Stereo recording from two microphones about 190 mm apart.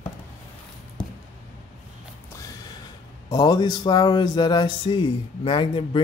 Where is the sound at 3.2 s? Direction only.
20° left (ahead or behind).